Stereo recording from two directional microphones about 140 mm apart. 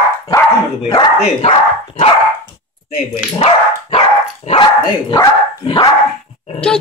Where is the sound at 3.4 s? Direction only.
50° left (ahead or behind); by 5.9 s 30° left (ahead or behind).